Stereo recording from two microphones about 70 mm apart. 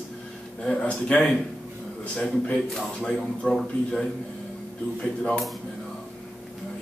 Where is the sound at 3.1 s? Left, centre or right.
Centre.